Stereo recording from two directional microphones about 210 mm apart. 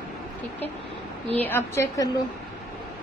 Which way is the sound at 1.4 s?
10° left (ahead or behind).